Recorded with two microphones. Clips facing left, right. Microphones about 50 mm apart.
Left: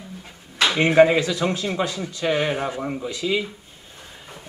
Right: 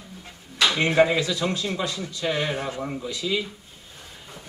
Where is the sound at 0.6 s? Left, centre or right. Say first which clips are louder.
Left 4 dB; left.